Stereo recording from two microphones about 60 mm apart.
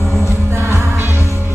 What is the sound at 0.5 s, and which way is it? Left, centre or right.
Music, right.